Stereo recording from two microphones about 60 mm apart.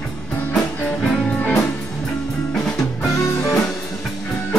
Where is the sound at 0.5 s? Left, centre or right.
Centre.